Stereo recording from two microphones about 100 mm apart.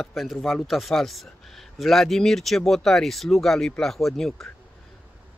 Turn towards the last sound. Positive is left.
turn(degrees=5)  # may be behind; listen again after turning